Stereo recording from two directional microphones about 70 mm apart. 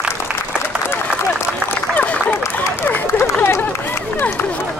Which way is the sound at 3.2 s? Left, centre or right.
Left.